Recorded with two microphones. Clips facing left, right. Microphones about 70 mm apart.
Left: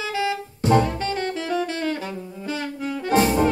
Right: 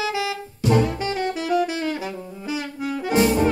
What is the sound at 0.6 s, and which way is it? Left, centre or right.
Music, left.